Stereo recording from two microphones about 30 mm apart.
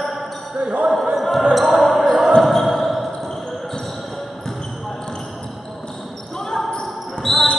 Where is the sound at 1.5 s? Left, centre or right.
Centre.